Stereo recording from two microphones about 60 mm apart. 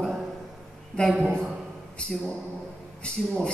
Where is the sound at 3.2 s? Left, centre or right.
Centre.